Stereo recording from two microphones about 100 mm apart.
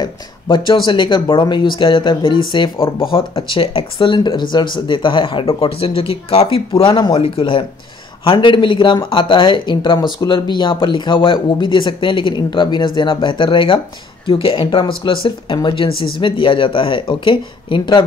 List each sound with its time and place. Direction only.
0.0 s speech: 50° left (ahead or behind)